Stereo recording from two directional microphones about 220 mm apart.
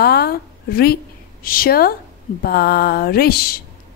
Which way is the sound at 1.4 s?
40° left (ahead or behind).